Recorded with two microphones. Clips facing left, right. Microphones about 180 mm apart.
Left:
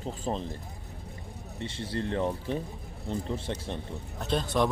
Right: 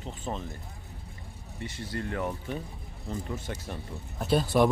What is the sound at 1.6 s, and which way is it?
Speech, 25° left (ahead or behind).